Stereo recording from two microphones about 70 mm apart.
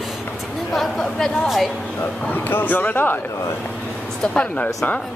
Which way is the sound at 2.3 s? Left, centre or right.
Left.